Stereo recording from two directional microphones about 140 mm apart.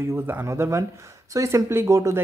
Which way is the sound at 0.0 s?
15° right (ahead or behind).